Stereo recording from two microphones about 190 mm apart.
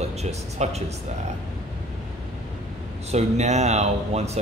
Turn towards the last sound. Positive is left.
turn(degrees=-35)  # may be behind; listen again after turning